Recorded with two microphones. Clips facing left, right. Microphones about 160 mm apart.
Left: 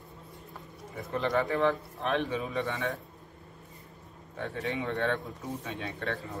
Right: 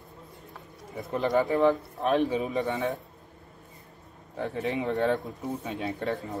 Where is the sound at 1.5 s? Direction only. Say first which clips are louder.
Right 4 dB; 40° right (ahead or behind).